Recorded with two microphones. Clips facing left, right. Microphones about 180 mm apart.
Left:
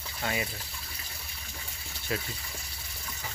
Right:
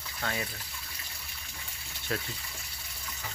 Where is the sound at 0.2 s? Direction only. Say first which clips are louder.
Left 2 dB; 15° left (ahead or behind).